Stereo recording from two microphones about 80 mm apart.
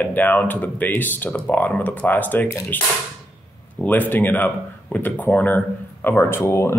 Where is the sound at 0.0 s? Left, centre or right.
Left.